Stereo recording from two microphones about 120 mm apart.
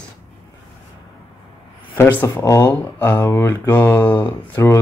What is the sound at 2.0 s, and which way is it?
Speech, 20° left (ahead or behind).